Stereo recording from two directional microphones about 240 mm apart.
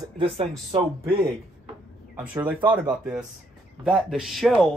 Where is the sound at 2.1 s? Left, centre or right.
Centre.